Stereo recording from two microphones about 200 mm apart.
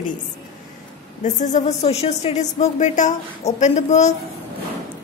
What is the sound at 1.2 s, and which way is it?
A woman's voice, 40° left (ahead or behind).